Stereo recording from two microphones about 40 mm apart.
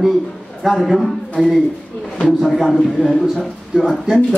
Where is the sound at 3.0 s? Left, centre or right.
Centre.